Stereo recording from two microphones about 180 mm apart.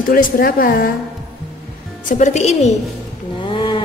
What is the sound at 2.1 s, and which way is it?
Speech, 40° left (ahead or behind).